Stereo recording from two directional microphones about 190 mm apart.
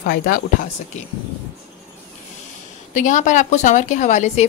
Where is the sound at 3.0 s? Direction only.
40° left (ahead or behind).